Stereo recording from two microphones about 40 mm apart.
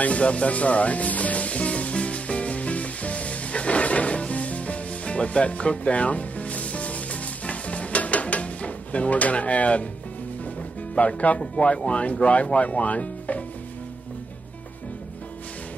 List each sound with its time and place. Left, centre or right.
0.0 s music: left
11.0 s speech: left